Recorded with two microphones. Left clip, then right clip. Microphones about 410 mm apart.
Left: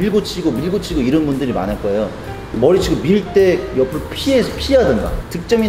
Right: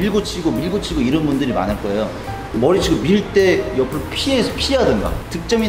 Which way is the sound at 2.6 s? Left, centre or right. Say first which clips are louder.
Left 2 dB; left.